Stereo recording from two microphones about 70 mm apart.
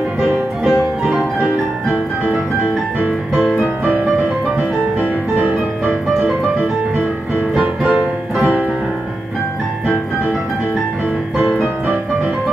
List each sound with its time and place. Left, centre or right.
0.2 s piano: centre
5.4 s music: centre
7.5 s music: centre
11.5 s music: centre